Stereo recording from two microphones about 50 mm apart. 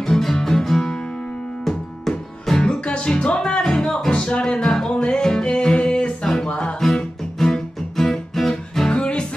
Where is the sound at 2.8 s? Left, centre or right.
Left; by 8.9 s centre.